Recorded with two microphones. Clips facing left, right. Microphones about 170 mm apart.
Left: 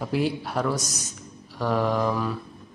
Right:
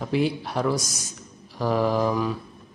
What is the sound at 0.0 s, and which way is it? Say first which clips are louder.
A man's voice: right 1 dB; centre (ahead or behind).